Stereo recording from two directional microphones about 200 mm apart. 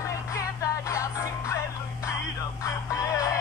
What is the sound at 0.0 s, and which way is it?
Music, 15° left (ahead or behind).